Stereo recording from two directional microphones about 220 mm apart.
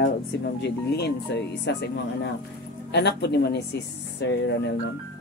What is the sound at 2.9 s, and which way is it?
Speech, 50° left (ahead or behind).